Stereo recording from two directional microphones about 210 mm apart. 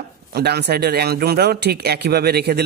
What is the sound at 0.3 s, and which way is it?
Speech, 50° right (ahead or behind).